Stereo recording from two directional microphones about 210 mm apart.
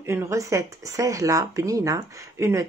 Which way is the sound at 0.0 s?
10° right (ahead or behind).